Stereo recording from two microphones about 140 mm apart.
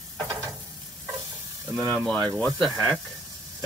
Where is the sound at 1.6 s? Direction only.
20° right (ahead or behind).